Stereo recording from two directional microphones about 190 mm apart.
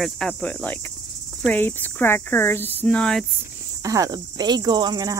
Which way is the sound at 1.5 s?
10° left (ahead or behind).